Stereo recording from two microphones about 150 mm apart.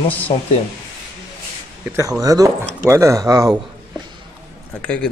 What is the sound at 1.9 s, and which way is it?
Speech, 20° right (ahead or behind).